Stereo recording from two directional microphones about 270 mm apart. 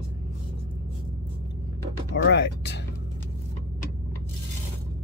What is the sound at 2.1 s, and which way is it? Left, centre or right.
Speech, left.